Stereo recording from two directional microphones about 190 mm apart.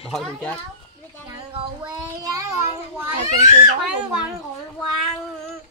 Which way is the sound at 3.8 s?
5° right (ahead or behind).